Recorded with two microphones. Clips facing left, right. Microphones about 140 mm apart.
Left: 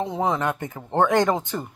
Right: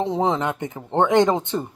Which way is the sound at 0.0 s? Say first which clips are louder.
Right 2 dB; 30° right (ahead or behind).